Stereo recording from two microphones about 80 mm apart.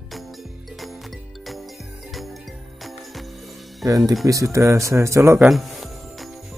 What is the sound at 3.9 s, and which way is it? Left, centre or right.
Speech, right.